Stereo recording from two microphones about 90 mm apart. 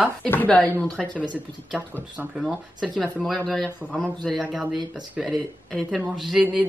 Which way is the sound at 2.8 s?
5° left (ahead or behind).